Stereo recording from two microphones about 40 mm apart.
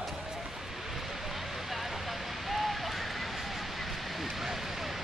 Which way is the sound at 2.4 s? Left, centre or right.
Centre.